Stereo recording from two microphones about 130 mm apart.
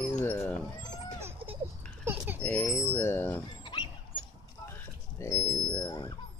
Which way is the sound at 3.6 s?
40° left (ahead or behind).